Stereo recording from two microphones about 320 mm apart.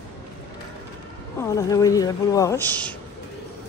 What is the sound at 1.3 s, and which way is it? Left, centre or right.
Speech, centre.